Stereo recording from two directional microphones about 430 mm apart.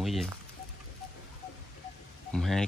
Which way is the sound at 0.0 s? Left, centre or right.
Centre.